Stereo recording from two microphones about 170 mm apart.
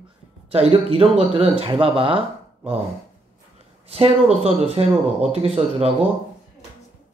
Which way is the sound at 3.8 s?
35° right (ahead or behind).